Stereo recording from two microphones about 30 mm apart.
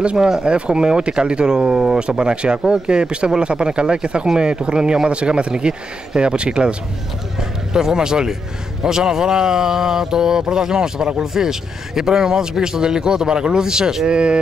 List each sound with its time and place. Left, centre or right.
0.2 s speech: right
2.0 s speech: right
7.3 s a man's voice: right
14.1 s speech: right